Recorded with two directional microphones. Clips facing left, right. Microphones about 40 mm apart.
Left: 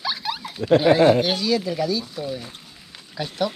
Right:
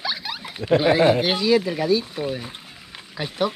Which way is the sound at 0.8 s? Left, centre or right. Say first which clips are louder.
Left 1 dB; centre.